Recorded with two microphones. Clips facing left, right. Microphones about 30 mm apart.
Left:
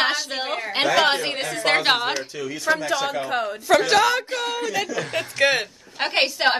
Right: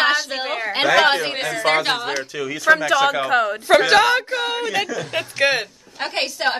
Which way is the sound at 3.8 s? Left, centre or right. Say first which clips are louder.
Right 3 dB; right.